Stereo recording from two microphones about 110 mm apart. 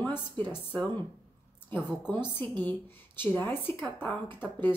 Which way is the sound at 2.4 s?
20° left (ahead or behind).